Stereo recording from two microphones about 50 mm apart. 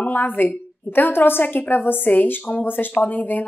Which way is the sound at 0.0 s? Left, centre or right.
Left.